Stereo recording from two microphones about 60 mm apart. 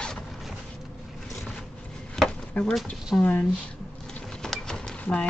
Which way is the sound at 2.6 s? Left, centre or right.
Left.